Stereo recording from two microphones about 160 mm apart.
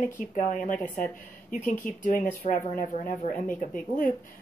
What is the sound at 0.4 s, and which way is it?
Speech, 50° left (ahead or behind).